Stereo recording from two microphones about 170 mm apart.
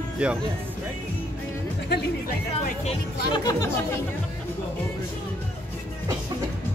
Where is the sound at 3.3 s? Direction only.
25° left (ahead or behind).